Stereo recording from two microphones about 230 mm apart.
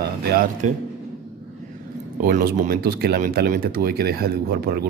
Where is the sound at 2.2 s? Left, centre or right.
Right.